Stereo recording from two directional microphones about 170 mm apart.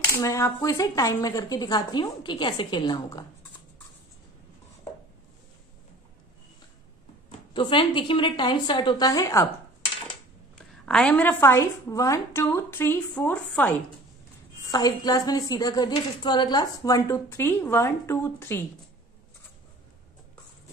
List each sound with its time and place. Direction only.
0.0 s a woman's voice: 15° left (ahead or behind)
7.2 s a woman's voice: 30° left (ahead or behind)
10.9 s a woman's voice: 5° left (ahead or behind)
14.7 s a woman's voice: 25° left (ahead or behind)